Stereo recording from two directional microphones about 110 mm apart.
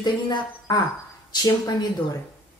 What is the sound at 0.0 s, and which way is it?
Speech, 40° left (ahead or behind).